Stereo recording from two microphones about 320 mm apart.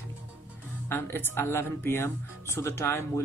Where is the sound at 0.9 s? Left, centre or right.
Centre.